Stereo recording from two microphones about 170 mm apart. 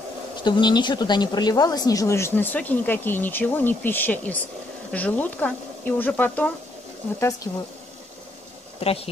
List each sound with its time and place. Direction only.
0.4 s speech: 25° left (ahead or behind); by 6.5 s 10° left (ahead or behind)
8.7 s speech: 35° left (ahead or behind)